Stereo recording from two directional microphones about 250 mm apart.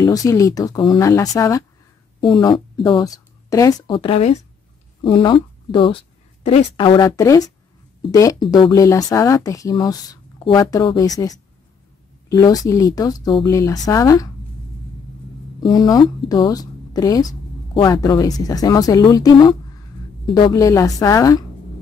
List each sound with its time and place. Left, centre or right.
0.0 s a woman's voice: centre
15.6 s speech: centre